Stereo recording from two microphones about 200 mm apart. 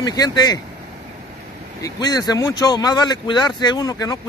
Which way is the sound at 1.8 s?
20° left (ahead or behind).